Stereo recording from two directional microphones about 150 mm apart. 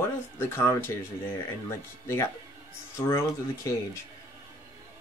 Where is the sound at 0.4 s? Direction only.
15° left (ahead or behind).